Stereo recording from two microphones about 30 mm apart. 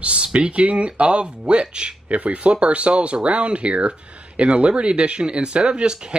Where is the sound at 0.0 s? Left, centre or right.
Right.